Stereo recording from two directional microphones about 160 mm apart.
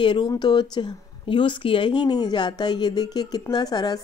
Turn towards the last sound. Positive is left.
turn(degrees=25)  # may be behind; listen again after turning